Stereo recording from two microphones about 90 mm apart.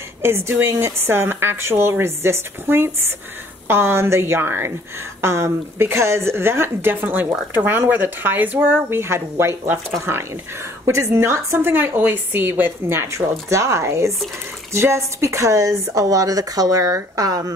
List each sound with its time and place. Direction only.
0.2 s a woman's voice: 30° right (ahead or behind); by 17.5 s 45° right (ahead or behind)